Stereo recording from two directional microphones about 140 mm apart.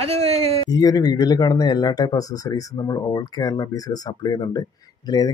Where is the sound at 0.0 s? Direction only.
50° right (ahead or behind).